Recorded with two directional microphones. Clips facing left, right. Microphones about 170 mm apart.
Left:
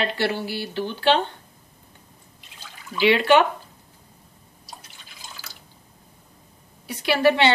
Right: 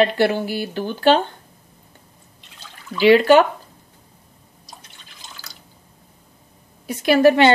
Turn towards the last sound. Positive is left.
turn(degrees=-45)  # may be behind; listen again after turning